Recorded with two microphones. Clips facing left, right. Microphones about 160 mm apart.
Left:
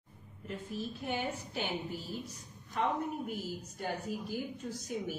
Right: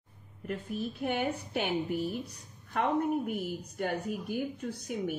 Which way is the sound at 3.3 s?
60° right (ahead or behind).